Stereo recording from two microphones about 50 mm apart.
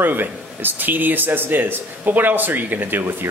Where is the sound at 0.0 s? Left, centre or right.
Right.